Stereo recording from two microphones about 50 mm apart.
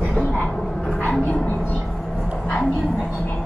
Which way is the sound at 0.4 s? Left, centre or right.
Left.